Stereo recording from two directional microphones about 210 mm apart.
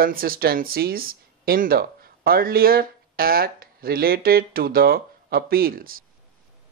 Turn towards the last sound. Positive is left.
turn(degrees=-45)  # may be behind; listen again after turning